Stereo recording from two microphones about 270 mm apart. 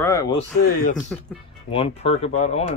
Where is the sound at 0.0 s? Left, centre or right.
Centre.